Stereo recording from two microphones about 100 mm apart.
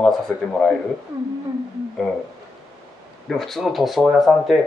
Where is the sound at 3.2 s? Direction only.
5° left (ahead or behind).